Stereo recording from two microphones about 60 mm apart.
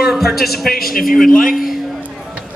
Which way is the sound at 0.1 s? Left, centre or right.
Centre.